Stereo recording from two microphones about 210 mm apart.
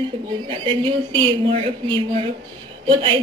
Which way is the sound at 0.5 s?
25° right (ahead or behind).